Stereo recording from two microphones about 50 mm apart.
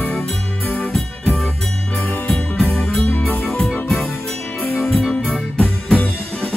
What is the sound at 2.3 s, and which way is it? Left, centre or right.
Jingle bell, centre.